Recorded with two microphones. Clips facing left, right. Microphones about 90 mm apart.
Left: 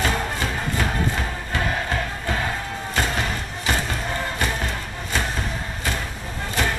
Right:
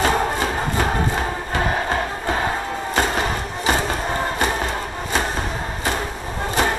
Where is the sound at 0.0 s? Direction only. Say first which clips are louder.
Right 5 dB; 30° right (ahead or behind).